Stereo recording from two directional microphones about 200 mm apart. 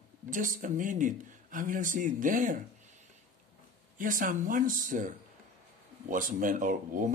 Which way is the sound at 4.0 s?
40° right (ahead or behind).